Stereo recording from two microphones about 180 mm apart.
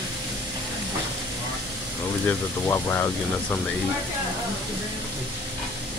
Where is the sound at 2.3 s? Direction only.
15° left (ahead or behind).